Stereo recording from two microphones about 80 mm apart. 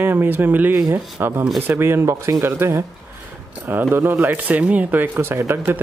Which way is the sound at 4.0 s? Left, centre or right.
Right.